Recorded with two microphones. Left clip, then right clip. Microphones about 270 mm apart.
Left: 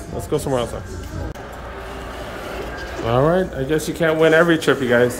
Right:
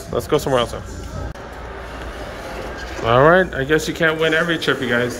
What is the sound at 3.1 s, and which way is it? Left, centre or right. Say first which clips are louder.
Speech: right 5 dB; centre.